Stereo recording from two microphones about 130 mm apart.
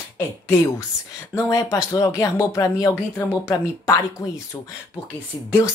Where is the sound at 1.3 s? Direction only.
20° left (ahead or behind).